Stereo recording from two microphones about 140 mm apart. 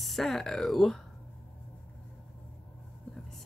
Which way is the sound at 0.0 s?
Centre (ahead or behind).